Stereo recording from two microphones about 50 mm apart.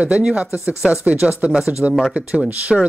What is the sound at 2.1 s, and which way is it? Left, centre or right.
Speech, right.